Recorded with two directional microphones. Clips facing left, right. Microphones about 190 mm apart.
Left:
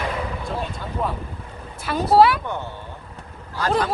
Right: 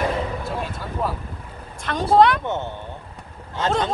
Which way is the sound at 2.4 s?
20° right (ahead or behind).